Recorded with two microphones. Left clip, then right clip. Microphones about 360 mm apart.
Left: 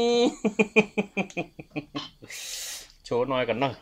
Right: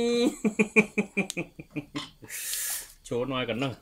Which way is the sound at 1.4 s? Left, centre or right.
Left.